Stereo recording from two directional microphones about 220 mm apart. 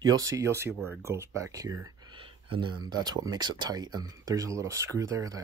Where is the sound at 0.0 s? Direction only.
15° right (ahead or behind).